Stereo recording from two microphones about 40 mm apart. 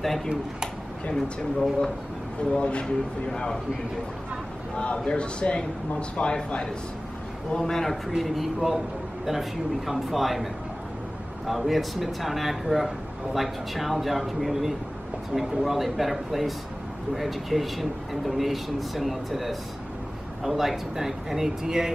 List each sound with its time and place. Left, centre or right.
0.0 s speech: centre
2.5 s speech: left
3.3 s speech: centre
4.7 s speech: left
7.5 s speech: centre
8.2 s speech: centre